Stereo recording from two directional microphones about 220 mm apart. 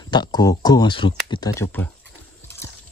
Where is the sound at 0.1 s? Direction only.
20° left (ahead or behind).